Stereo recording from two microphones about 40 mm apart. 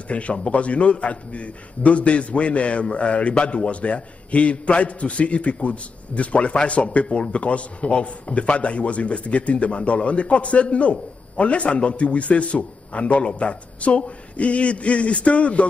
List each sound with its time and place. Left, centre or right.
0.1 s a man's voice: left